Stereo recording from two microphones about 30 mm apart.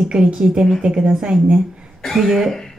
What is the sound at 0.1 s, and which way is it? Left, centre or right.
A woman's voice, right.